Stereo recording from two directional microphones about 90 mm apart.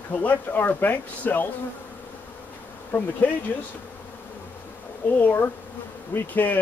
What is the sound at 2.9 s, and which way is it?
Speech, 20° left (ahead or behind).